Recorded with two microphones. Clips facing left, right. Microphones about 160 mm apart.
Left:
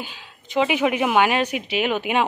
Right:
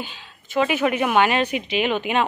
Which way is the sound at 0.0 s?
15° left (ahead or behind).